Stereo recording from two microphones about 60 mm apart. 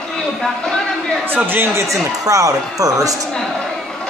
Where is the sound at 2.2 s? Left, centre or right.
Right.